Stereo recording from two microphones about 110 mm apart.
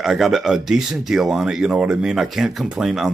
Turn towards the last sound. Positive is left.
turn(degrees=0)  # may be behind; listen again after turning